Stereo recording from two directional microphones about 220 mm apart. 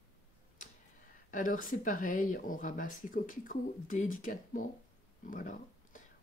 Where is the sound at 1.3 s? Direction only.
35° left (ahead or behind).